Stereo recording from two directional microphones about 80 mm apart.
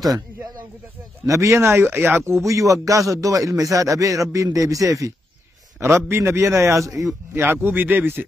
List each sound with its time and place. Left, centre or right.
1.2 s a man's voice: right
2.4 s a man's voice: right
7.5 s speech: right